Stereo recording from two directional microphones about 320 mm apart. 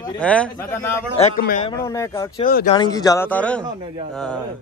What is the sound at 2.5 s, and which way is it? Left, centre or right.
Speech, left.